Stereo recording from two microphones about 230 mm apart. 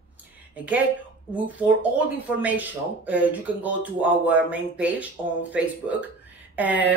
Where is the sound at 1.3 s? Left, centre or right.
Centre.